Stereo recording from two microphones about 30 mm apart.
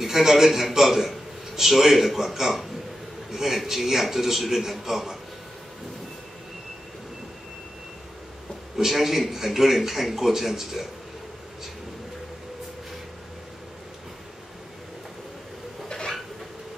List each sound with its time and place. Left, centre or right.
0.0 s a man's voice: centre
8.7 s a man's voice: centre